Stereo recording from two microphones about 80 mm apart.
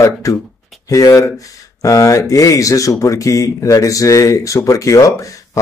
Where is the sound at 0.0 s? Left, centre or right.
Left.